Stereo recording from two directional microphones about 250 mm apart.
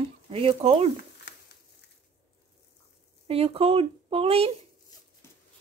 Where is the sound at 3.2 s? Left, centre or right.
Right.